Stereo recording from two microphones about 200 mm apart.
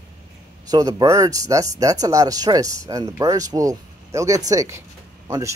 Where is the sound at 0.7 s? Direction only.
20° right (ahead or behind).